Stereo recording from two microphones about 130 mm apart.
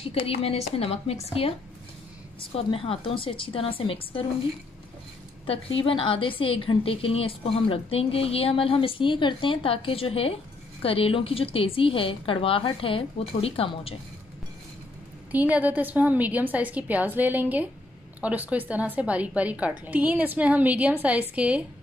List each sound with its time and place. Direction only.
0.0 s a woman's voice: 50° left (ahead or behind)
2.5 s a woman's voice: 50° left (ahead or behind)
5.5 s a woman's voice: 45° left (ahead or behind)
15.3 s a woman's voice: 15° right (ahead or behind)